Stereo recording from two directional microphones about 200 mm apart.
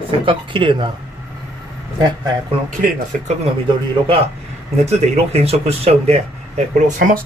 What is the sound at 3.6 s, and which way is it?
Speech, 25° right (ahead or behind).